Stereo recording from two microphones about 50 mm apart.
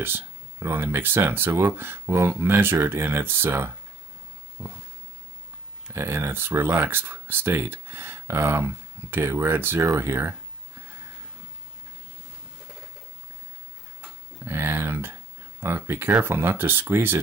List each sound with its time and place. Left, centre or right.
0.6 s speech: right
0.8 s speech: right
5.9 s speech: right
7.0 s speech: right
9.8 s speech: right
14.4 s speech: right